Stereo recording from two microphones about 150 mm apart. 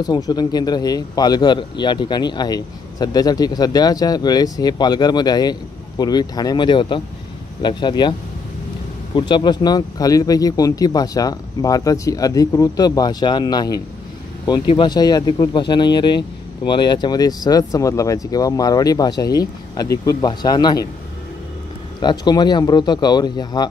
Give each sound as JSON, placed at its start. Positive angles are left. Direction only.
{"t": 0.0, "sound": "speech", "side_deg": 25}
{"t": 9.1, "sound": "speech", "side_deg": 30}
{"t": 22.0, "sound": "speech", "side_deg": 30}